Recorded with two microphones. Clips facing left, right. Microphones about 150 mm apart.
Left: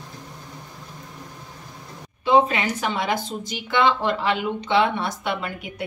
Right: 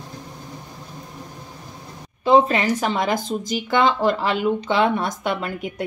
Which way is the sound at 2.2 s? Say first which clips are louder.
Right 3 dB; 40° right (ahead or behind).